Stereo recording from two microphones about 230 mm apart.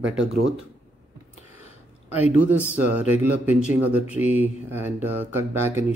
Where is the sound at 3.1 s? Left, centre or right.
Left.